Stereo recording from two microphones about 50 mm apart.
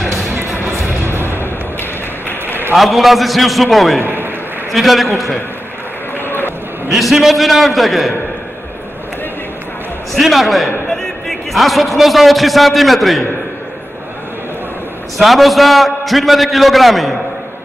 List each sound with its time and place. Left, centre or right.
0.7 s music: right
2.7 s a man's voice: centre
4.0 s a sound: right
4.7 s a man's voice: centre
6.1 s run: left
6.9 s a man's voice: centre
10.1 s a man's voice: centre
10.9 s a sound: centre
12.0 s a man's voice: centre
15.1 s a man's voice: centre